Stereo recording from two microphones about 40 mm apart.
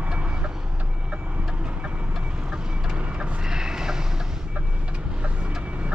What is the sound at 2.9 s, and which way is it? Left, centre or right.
Vehicle, right.